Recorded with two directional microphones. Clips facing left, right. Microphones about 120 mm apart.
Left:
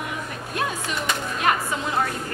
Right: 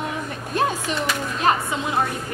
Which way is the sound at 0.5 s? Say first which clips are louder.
Right 5 dB; 30° right (ahead or behind).